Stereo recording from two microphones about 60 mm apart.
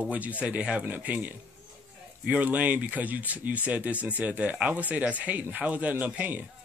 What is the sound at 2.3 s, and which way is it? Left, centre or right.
Speech, right.